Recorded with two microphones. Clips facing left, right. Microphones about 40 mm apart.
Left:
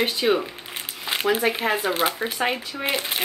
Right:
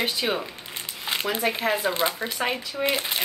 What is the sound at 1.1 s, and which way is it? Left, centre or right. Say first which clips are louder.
Speech: left 4 dB; centre.